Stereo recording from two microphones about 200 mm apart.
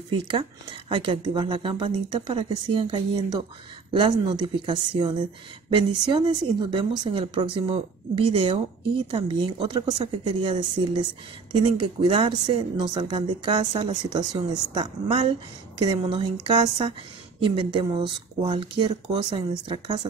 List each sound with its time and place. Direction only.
0.1 s a woman's voice: 25° right (ahead or behind)